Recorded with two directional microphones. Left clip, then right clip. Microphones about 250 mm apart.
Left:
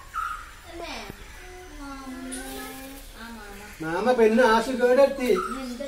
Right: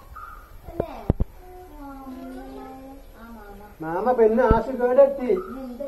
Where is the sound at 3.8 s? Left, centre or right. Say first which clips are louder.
Right 1 dB; left.